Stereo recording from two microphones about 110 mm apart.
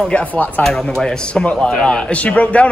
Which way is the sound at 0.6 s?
5° left (ahead or behind).